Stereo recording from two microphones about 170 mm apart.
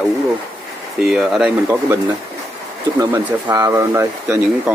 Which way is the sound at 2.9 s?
20° right (ahead or behind).